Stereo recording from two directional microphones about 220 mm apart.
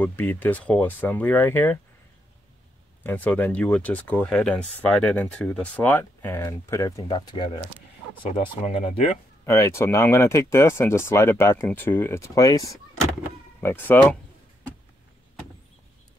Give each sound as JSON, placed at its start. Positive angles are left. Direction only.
{"t": 0.0, "sound": "speech", "side_deg": 10}
{"t": 3.0, "sound": "speech", "side_deg": 10}
{"t": 9.5, "sound": "speech", "side_deg": 10}